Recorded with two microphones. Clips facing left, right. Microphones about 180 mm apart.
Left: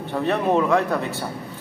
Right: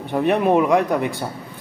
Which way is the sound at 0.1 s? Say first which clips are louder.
Right 4 dB; 15° right (ahead or behind).